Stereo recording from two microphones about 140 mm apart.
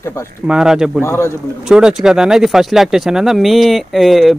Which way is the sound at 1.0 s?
20° left (ahead or behind).